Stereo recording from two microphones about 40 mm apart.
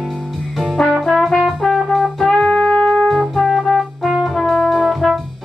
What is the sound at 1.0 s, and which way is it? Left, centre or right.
Music, centre.